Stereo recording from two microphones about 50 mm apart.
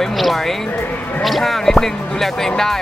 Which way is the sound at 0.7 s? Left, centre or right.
Left.